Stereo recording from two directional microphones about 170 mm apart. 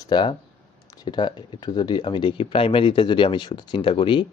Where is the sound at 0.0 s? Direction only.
25° left (ahead or behind).